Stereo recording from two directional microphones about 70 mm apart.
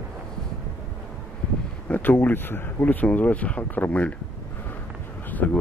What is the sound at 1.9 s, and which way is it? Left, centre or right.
Speech, left.